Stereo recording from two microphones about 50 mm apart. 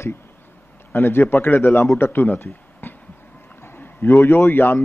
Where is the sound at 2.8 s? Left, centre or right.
Left.